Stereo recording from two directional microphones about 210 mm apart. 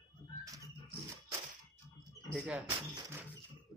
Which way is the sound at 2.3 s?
5° right (ahead or behind).